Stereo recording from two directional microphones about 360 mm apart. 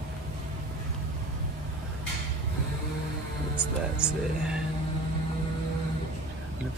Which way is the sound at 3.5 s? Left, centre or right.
Centre.